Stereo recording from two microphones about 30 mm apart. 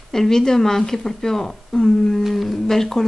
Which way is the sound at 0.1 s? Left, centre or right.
Centre.